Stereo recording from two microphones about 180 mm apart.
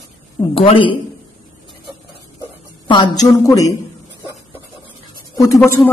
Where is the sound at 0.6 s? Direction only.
30° left (ahead or behind).